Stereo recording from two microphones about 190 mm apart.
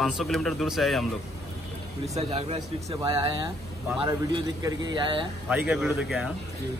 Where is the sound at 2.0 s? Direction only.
35° right (ahead or behind).